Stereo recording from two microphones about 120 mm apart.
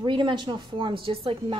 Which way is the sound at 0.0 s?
45° right (ahead or behind).